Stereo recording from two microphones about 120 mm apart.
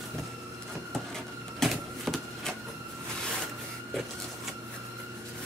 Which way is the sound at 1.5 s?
Centre (ahead or behind).